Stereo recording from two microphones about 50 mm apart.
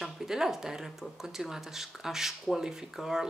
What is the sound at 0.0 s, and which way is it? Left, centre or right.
Speech, centre.